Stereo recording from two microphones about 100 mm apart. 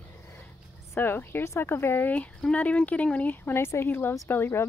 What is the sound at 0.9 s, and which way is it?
Speech, 20° left (ahead or behind).